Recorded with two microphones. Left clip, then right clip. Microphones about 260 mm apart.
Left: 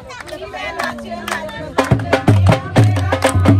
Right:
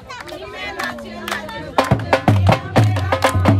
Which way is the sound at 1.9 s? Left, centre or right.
Right.